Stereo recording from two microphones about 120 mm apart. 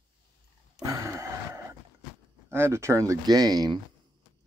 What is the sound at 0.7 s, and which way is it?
Grunt, 25° right (ahead or behind).